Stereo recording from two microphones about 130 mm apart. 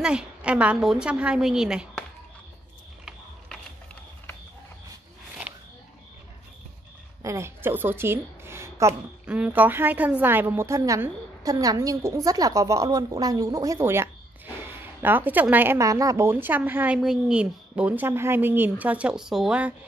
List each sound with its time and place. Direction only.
0.0 s a woman's voice: 5° right (ahead or behind)
3.1 s mechanisms: 5° left (ahead or behind)
5.5 s a sound: 10° right (ahead or behind)
7.2 s a woman's voice: 25° right (ahead or behind)
9.2 s a woman's voice: 10° right (ahead or behind)